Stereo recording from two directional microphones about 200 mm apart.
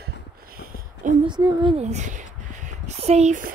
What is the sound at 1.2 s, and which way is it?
Speech, 20° right (ahead or behind).